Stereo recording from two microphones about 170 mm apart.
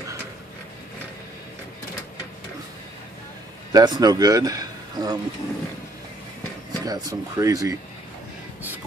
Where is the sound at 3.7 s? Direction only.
25° right (ahead or behind).